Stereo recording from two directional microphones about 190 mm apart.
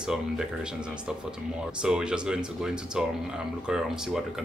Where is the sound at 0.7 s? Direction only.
5° right (ahead or behind).